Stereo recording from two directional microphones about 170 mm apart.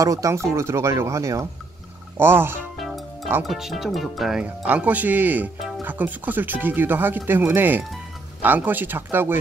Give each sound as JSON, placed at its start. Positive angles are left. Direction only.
{"t": 0.0, "sound": "speech", "side_deg": -20}
{"t": 2.8, "sound": "music", "side_deg": 0}
{"t": 3.4, "sound": "speech", "side_deg": 0}